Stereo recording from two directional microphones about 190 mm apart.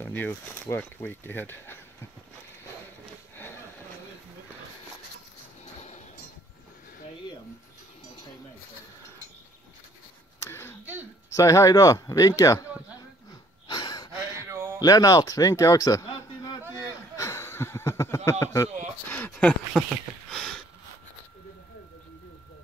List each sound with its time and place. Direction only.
0.0 s speech: 10° left (ahead or behind)
10.4 s a sound: 10° left (ahead or behind)
11.3 s speech: 15° left (ahead or behind)
13.7 s gasp: 20° left (ahead or behind)
14.1 s a sound: 15° right (ahead or behind)
14.8 s speech: 20° left (ahead or behind)
17.2 s speech: 15° left (ahead or behind)
19.0 s a sound: 10° left (ahead or behind)
20.2 s sniff: centre (ahead or behind)